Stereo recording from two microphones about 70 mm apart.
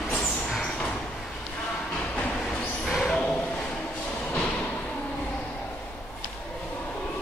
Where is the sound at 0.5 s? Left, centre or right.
Centre.